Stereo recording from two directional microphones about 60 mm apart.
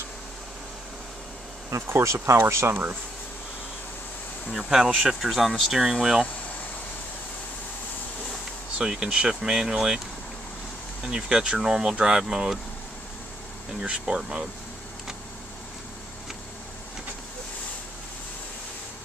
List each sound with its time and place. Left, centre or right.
1.7 s speech: right
2.7 s speech: right
4.5 s speech: centre
8.7 s speech: centre
11.0 s speech: centre
13.7 s speech: centre